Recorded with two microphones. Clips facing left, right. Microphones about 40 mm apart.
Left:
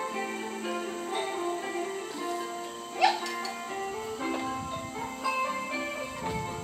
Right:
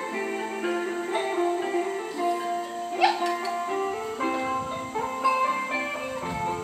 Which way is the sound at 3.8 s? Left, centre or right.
Right.